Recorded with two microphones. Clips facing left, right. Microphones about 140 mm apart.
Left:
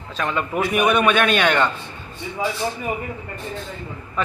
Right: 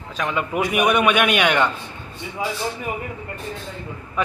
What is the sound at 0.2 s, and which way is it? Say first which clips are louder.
A man's voice: even; 10° right (ahead or behind).